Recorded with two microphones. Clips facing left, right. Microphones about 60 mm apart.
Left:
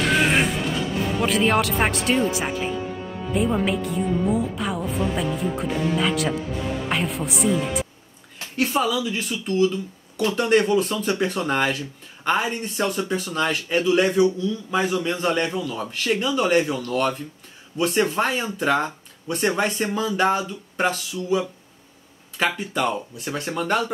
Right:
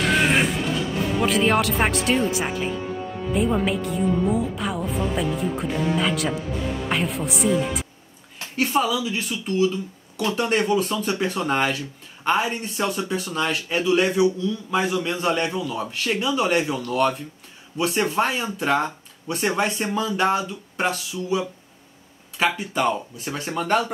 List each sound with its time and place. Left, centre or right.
0.0 s music: centre
1.2 s a man's voice: centre